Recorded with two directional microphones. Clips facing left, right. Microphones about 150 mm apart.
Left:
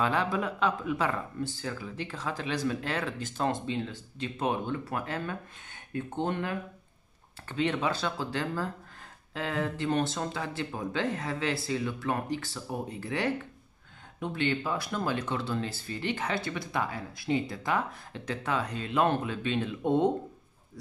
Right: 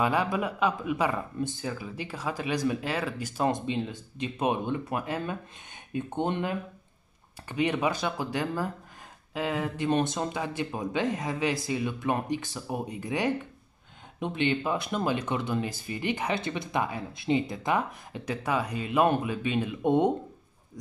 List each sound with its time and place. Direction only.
0.0 s speech: 10° right (ahead or behind)